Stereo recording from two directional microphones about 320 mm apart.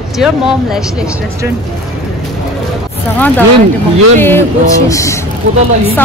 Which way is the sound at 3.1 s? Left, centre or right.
Centre.